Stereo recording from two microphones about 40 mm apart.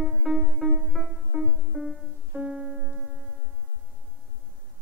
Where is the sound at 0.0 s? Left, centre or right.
Centre.